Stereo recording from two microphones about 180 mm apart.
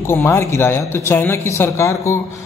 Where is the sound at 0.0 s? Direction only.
15° left (ahead or behind).